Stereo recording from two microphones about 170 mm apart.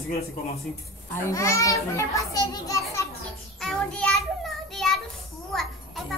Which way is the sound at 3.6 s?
5° left (ahead or behind).